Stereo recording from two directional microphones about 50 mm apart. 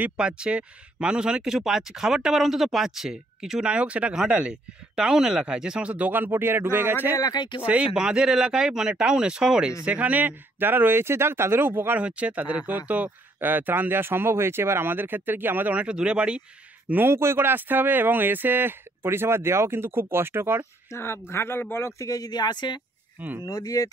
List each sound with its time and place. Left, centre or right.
0.2 s speech: right
3.6 s speech: right
7.6 s speech: right
9.8 s speech: right
12.0 s speech: right
15.7 s speech: right
16.9 s speech: right
20.9 s speech: left
23.1 s speech: right